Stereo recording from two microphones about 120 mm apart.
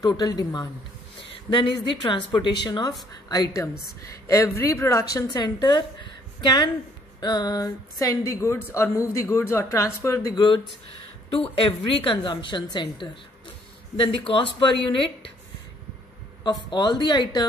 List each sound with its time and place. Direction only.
0.0 s speech: 30° left (ahead or behind)
1.5 s speech: 45° left (ahead or behind)
12.0 s a woman's voice: 45° left (ahead or behind)
16.4 s speech: 40° left (ahead or behind)